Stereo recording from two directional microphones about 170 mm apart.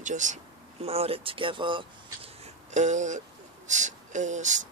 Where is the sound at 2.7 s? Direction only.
45° right (ahead or behind).